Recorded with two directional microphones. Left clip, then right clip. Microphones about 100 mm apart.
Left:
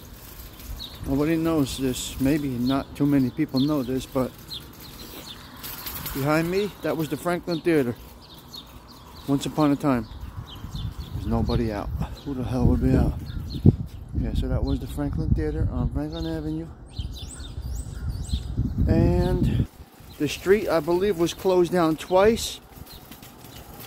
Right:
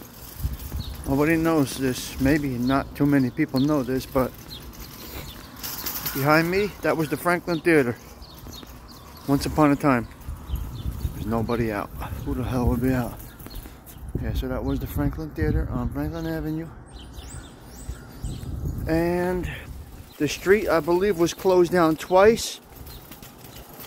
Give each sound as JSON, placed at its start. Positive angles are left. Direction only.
{"t": 1.2, "sound": "speech", "side_deg": 35}
{"t": 3.5, "sound": "speech", "side_deg": 10}
{"t": 6.1, "sound": "speech", "side_deg": 15}
{"t": 9.3, "sound": "speech", "side_deg": 5}
{"t": 11.5, "sound": "speech", "side_deg": 15}
{"t": 14.2, "sound": "speech", "side_deg": 15}
{"t": 18.9, "sound": "speech", "side_deg": 0}